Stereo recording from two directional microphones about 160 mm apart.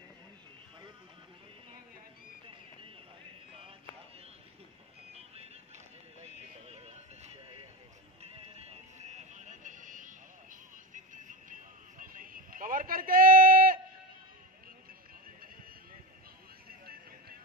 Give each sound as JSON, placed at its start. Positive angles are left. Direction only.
{"t": 5.1, "sound": "music", "side_deg": -40}
{"t": 8.2, "sound": "music", "side_deg": -40}
{"t": 12.0, "sound": "a sound", "side_deg": -60}